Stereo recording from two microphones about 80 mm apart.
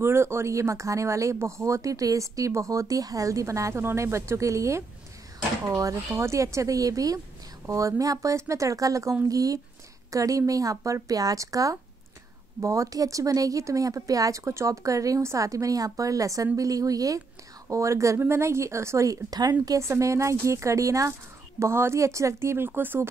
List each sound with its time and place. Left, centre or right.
0.0 s speech: right